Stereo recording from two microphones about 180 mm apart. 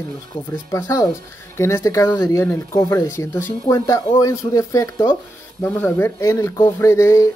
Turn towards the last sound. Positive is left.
turn(degrees=15)  # may be behind; listen again after turning